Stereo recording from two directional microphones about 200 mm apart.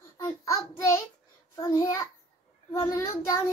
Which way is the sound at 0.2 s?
15° left (ahead or behind).